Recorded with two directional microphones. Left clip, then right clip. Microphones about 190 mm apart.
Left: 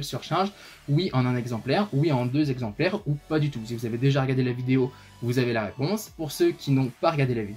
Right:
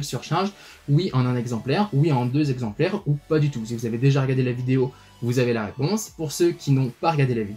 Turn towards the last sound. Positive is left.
turn(degrees=35)  # may be behind; listen again after turning